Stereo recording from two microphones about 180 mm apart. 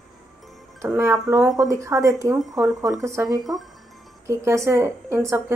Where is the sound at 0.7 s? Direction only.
15° right (ahead or behind).